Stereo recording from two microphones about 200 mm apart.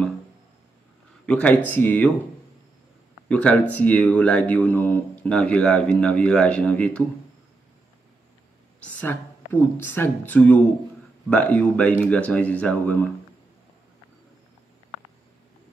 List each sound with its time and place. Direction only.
1.2 s speech: 5° left (ahead or behind)
3.3 s speech: 5° left (ahead or behind)
8.8 s speech: 10° left (ahead or behind)